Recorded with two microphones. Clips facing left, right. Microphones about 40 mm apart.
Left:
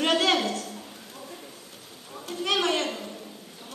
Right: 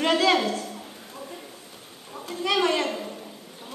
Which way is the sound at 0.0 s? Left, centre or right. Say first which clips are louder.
Right 2 dB; left.